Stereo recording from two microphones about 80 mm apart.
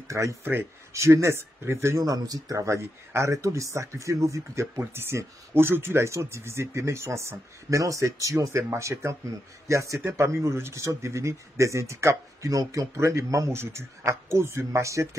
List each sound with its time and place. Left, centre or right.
0.1 s speech: right
2.0 s speech: right